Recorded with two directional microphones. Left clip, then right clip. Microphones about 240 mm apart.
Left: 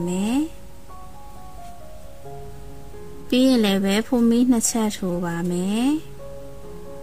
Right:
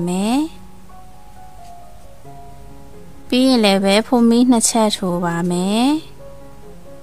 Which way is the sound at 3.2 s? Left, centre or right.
Centre.